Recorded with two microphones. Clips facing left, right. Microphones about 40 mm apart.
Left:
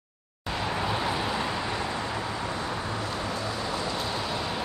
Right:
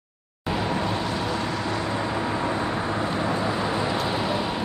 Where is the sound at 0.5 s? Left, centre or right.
Centre.